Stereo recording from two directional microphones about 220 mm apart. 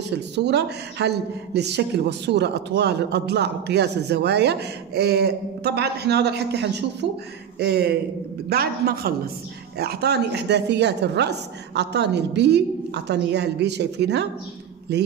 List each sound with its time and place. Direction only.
0.4 s a woman's voice: 50° right (ahead or behind)